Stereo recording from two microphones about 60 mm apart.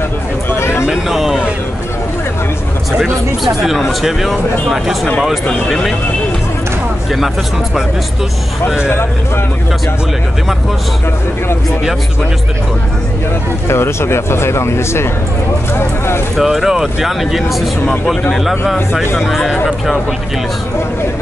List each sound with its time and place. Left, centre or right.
0.6 s a sound: left
0.8 s speech: centre
3.0 s speech: centre
13.7 s speech: left
16.3 s speech: centre
19.1 s speech: centre